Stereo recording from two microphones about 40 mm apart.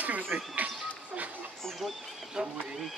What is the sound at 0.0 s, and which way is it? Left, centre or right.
Bird, right.